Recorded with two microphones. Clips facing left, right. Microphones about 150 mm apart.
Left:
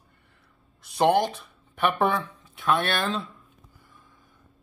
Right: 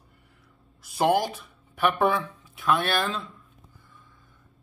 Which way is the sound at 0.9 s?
5° right (ahead or behind).